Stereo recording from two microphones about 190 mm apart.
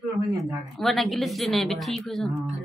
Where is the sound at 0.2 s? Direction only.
15° right (ahead or behind).